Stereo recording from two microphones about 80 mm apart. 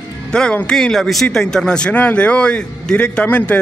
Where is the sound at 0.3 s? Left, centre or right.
Centre.